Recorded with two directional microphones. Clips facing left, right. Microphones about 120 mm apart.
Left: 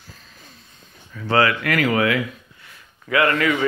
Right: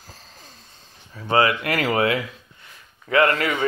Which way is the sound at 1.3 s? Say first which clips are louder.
Left 1 dB; 20° right (ahead or behind).